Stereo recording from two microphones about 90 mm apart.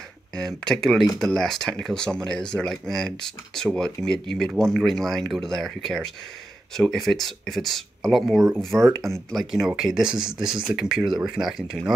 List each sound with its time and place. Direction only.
0.4 s speech: 5° left (ahead or behind)